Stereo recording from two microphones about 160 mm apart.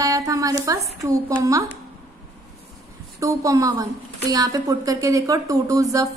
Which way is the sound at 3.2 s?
20° right (ahead or behind).